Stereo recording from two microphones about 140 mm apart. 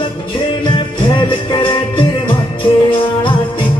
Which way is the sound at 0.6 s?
35° left (ahead or behind).